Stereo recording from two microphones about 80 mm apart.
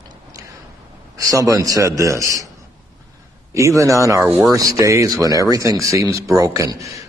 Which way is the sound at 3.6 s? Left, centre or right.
Right.